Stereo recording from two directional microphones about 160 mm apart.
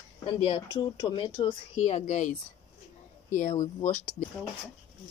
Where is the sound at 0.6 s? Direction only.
20° left (ahead or behind).